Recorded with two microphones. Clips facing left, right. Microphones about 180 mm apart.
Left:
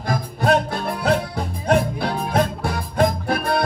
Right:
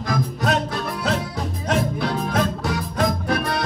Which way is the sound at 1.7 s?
55° left (ahead or behind).